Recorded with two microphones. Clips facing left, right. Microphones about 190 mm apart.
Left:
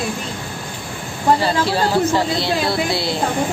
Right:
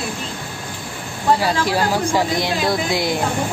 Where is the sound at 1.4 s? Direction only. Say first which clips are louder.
Left 1 dB; 10° right (ahead or behind).